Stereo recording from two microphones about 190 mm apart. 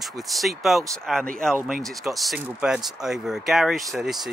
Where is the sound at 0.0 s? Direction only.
Centre (ahead or behind).